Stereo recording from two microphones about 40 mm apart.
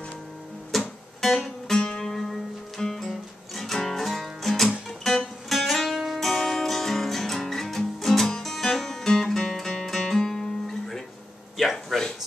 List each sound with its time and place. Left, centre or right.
0.7 s music: centre
1.7 s music: centre
11.5 s a sound: centre